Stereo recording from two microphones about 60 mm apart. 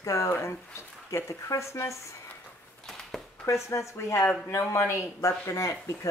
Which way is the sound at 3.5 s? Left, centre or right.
Left.